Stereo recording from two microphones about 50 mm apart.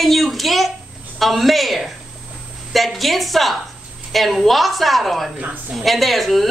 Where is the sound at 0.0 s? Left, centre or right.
Centre.